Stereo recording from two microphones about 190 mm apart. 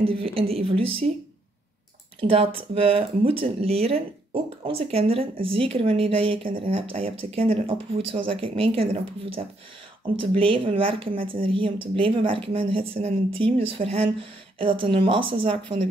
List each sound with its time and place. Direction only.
0.0 s speech: 30° right (ahead or behind)
2.1 s speech: 30° right (ahead or behind)
10.3 s speech: 30° right (ahead or behind)